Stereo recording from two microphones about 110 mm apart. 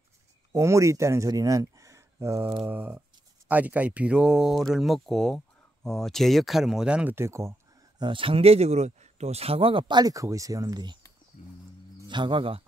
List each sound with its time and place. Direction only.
0.5 s speech: 25° right (ahead or behind)
2.6 s a sound: 15° right (ahead or behind)
3.4 s speech: 15° right (ahead or behind)
7.2 s speech: 25° right (ahead or behind)
8.0 s speech: 50° right (ahead or behind)
12.1 s speech: 45° right (ahead or behind)